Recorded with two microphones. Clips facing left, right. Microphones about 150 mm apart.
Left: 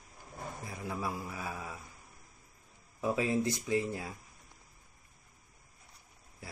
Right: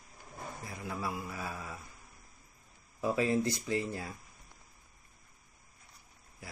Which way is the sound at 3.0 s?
15° left (ahead or behind).